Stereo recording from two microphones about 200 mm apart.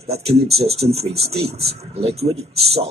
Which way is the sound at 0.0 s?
30° right (ahead or behind).